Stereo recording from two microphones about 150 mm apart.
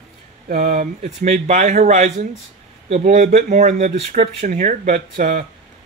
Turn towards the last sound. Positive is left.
turn(degrees=-55)  # may be behind; listen again after turning